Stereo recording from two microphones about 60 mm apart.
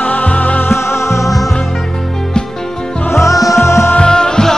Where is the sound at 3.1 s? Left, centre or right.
Left.